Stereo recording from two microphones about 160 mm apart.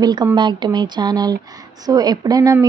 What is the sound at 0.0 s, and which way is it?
Speech, 25° right (ahead or behind).